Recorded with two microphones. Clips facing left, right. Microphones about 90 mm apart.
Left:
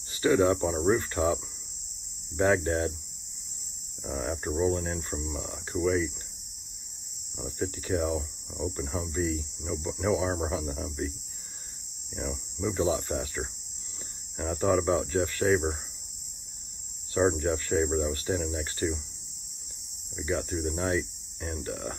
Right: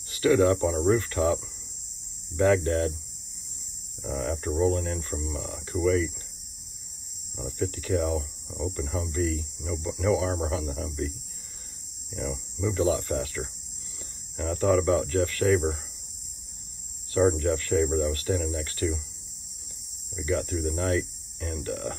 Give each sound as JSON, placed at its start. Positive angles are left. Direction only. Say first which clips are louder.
{"t": 0.1, "sound": "speech", "louder": "right 2 dB", "side_deg": 25}
{"t": 4.0, "sound": "speech", "louder": "right 2 dB", "side_deg": 25}
{"t": 7.4, "sound": "speech", "louder": "right 2 dB", "side_deg": 25}
{"t": 12.2, "sound": "speech", "louder": "right 2 dB", "side_deg": 20}
{"t": 17.1, "sound": "speech", "louder": "right 3 dB", "side_deg": 25}
{"t": 20.2, "sound": "speech", "louder": "right 2 dB", "side_deg": 25}